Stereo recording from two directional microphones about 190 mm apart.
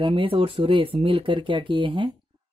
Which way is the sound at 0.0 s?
25° right (ahead or behind).